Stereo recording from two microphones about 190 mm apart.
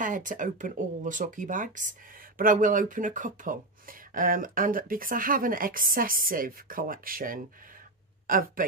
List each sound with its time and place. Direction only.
0.0 s speech: 45° right (ahead or behind)